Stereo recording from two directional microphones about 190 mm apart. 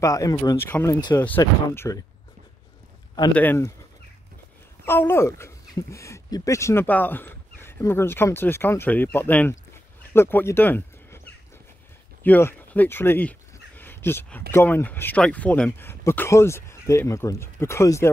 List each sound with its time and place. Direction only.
0.0 s speech: 15° left (ahead or behind)
3.3 s speech: 10° left (ahead or behind)
4.8 s speech: 10° left (ahead or behind)
12.2 s a sound: 10° left (ahead or behind)
14.5 s speech: 10° left (ahead or behind)